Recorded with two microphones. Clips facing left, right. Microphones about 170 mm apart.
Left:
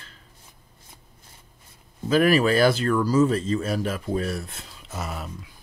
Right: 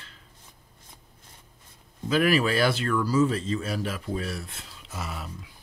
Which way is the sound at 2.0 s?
40° left (ahead or behind).